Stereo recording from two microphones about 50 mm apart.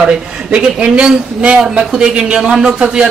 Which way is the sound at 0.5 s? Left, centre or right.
Centre.